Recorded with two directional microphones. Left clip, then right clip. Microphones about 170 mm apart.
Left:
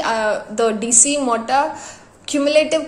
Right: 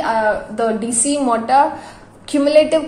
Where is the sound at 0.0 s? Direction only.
30° left (ahead or behind).